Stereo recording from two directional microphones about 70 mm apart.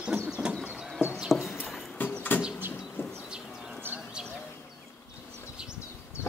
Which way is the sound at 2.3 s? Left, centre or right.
Left.